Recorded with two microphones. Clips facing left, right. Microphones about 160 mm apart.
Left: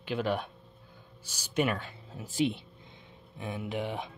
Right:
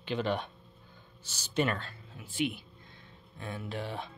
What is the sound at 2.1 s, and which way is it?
Speech, 35° left (ahead or behind).